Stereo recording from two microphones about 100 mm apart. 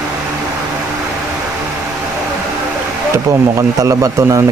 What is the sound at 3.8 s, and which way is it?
Speech, 30° right (ahead or behind).